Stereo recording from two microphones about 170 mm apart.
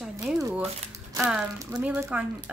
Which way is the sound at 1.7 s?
10° right (ahead or behind).